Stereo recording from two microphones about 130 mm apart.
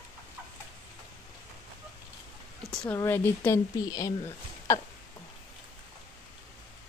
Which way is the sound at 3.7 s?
30° left (ahead or behind).